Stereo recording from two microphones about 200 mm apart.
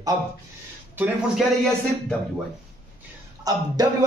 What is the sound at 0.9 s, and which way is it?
Speech, 5° right (ahead or behind).